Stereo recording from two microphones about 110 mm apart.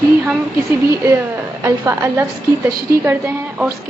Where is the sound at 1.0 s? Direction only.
25° right (ahead or behind).